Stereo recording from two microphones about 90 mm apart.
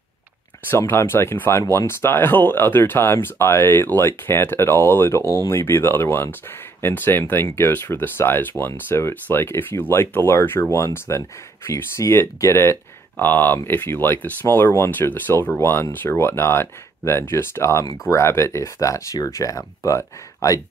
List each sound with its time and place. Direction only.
0.7 s speech: 25° left (ahead or behind)